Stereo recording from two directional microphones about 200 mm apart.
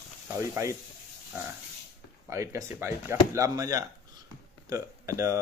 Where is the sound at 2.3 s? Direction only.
15° right (ahead or behind).